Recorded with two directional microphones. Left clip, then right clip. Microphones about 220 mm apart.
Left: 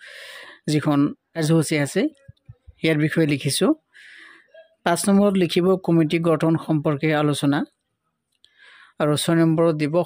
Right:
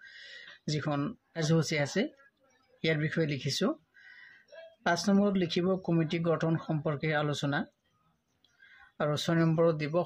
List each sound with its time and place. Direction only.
0.0 s speech: 45° left (ahead or behind)